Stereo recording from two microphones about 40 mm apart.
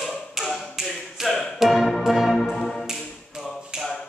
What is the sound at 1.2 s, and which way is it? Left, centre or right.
Music, centre.